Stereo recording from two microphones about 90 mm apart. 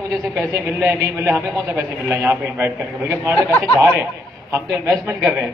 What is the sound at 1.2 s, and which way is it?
A man's voice, 30° right (ahead or behind).